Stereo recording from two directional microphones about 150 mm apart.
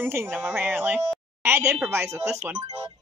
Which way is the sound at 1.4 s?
15° right (ahead or behind).